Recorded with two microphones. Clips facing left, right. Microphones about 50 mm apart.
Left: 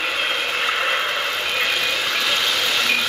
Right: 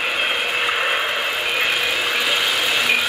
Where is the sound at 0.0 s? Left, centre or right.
Centre.